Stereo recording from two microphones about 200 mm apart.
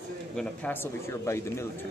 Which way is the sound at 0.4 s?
10° left (ahead or behind).